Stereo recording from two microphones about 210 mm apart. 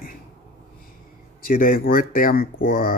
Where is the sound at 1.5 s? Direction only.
45° left (ahead or behind).